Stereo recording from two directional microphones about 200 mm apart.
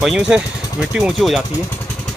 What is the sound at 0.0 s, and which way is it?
Speech, centre (ahead or behind).